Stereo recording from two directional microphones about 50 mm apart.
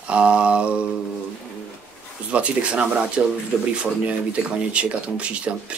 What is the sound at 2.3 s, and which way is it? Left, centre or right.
Speech, right.